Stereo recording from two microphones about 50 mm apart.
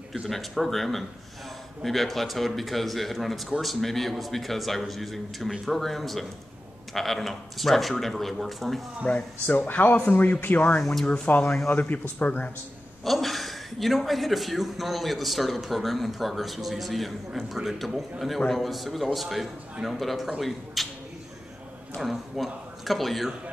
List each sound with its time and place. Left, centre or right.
0.3 s a man's voice: centre
9.0 s speech: left
10.8 s speech: centre
11.3 s speech: left
13.0 s a man's voice: centre
21.9 s speech: centre